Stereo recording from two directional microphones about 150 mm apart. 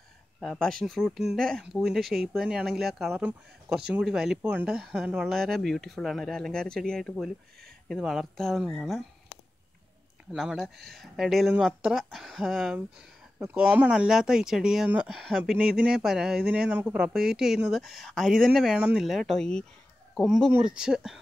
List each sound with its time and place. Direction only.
0.4 s speech: centre (ahead or behind)
10.3 s speech: centre (ahead or behind)